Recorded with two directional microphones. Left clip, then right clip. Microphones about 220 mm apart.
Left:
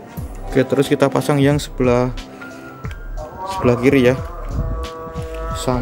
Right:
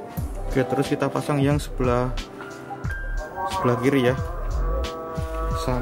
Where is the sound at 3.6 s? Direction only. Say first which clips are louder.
Left 7 dB; 15° left (ahead or behind).